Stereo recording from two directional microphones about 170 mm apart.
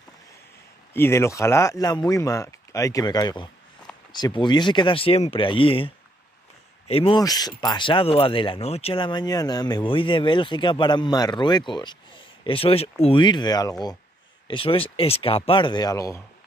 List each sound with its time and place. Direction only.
0.9 s speech: 15° left (ahead or behind)
14.5 s speech: 30° left (ahead or behind)